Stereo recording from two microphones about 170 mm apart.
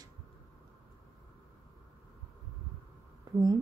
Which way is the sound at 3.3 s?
25° right (ahead or behind).